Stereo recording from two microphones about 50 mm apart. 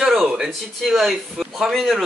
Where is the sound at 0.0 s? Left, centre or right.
Centre.